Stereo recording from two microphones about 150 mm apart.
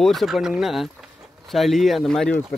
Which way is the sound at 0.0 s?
Centre (ahead or behind).